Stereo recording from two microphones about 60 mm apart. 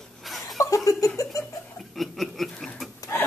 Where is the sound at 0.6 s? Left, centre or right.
Left.